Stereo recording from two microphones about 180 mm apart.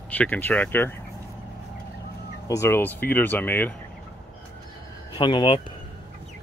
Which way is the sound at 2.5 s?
15° left (ahead or behind).